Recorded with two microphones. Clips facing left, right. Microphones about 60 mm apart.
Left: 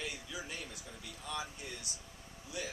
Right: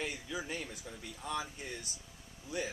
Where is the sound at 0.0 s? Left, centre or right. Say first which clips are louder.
Right 4 dB; right.